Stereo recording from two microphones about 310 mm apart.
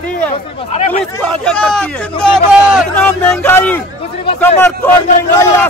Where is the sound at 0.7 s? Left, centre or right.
Left.